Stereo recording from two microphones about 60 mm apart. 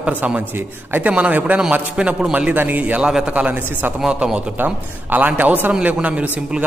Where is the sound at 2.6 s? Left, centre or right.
Right.